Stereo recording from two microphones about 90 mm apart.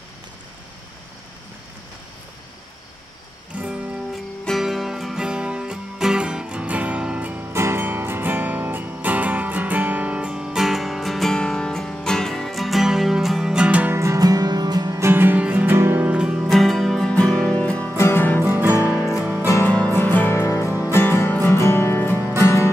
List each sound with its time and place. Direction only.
3.5 s music: 15° right (ahead or behind)
4.1 s music: centre (ahead or behind)
13.9 s music: 35° right (ahead or behind)
15.0 s music: 25° right (ahead or behind)
15.7 s music: 30° right (ahead or behind)
16.1 s music: 10° right (ahead or behind)
16.5 s music: centre (ahead or behind)
17.9 s music: 25° left (ahead or behind)
18.4 s music: 25° right (ahead or behind)
19.4 s music: 35° left (ahead or behind)
19.7 s music: 20° left (ahead or behind)